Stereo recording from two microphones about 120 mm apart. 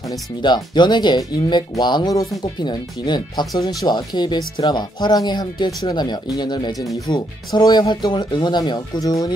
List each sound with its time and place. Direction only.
0.4 s speech: 40° left (ahead or behind)